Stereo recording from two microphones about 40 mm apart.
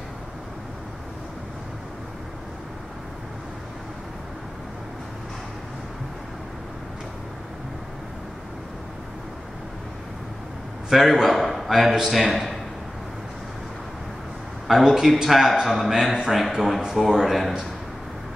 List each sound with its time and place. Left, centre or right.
10.9 s a man's voice: centre
14.7 s speech: centre